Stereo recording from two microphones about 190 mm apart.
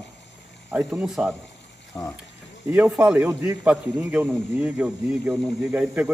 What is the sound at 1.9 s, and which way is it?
Speech, 20° left (ahead or behind).